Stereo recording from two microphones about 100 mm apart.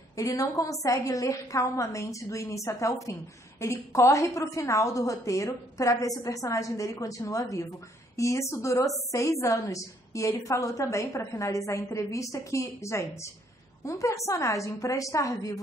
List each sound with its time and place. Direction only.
0.1 s a woman's voice: 35° left (ahead or behind)